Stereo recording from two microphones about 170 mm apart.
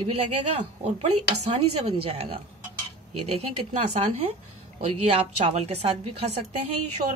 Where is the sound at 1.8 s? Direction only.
35° right (ahead or behind).